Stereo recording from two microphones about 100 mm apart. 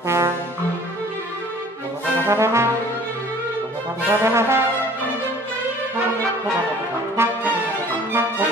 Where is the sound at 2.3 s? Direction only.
30° right (ahead or behind).